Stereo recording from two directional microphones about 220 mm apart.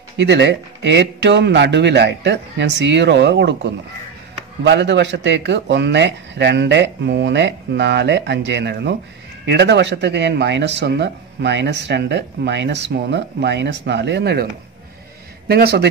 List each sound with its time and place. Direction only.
0.2 s speech: 50° right (ahead or behind)